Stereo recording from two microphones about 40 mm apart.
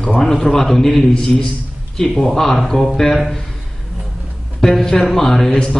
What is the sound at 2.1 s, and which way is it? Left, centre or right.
Speech, centre.